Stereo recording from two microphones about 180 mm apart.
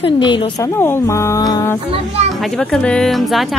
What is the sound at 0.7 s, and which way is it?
Speech, 10° left (ahead or behind).